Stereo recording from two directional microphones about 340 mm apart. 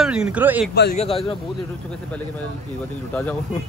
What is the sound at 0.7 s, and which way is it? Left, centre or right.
Speech, left.